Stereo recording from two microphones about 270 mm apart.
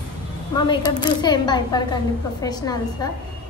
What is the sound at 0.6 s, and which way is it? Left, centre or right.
A woman's voice, centre.